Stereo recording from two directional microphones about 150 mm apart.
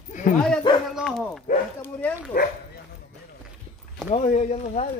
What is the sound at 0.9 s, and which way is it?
Speech, 5° left (ahead or behind).